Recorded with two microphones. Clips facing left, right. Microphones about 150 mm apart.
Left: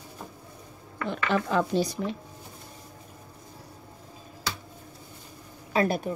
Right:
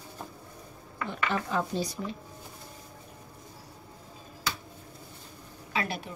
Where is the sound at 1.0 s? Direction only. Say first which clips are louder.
Left 4 dB; 85° left.